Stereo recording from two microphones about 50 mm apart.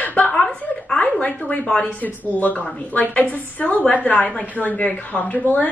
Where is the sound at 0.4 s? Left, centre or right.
Centre.